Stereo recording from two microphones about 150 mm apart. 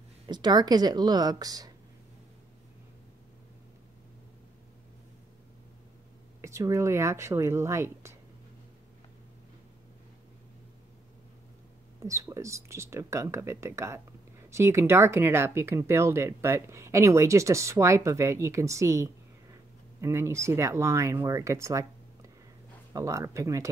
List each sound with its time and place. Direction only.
0.3 s speech: 30° right (ahead or behind)
6.4 s speech: 20° right (ahead or behind)
12.0 s speech: 20° right (ahead or behind)